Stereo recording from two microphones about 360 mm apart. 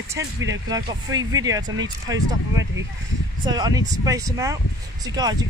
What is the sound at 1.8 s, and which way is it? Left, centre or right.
Speech, centre.